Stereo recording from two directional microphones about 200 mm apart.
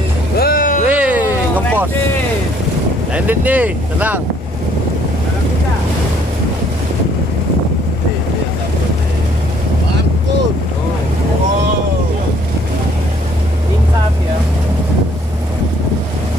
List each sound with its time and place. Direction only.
0.4 s music: 45° left (ahead or behind)
0.8 s music: 5° right (ahead or behind)
3.2 s speech: 10° right (ahead or behind)